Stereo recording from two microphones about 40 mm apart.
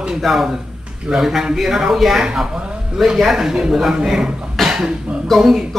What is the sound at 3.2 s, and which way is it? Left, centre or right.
Speech, centre.